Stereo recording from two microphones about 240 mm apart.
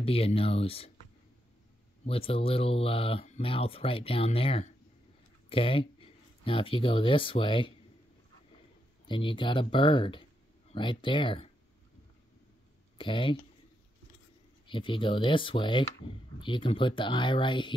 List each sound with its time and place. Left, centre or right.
0.0 s speech: left
2.0 s speech: left
9.0 s speech: centre
12.9 s speech: left
14.7 s speech: left